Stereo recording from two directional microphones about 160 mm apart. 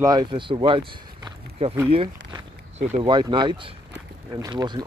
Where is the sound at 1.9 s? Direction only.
35° right (ahead or behind).